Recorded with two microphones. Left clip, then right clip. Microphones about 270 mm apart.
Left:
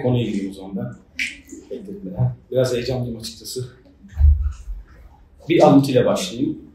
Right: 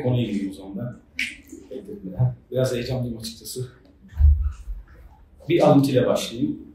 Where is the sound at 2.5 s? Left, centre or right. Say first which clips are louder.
Left 4 dB; centre.